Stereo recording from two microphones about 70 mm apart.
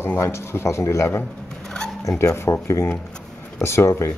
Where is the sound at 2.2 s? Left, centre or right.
Left.